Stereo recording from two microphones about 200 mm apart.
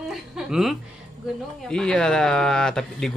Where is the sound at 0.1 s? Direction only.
Centre (ahead or behind).